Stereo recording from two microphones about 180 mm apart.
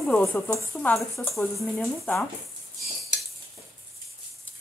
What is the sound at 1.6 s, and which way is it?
Speech, centre (ahead or behind).